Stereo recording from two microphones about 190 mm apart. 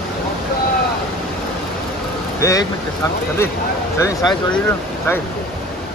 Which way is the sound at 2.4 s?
15° left (ahead or behind).